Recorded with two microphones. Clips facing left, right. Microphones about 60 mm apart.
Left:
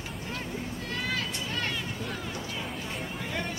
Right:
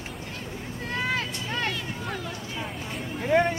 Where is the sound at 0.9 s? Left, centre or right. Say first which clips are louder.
Right 5 dB; right.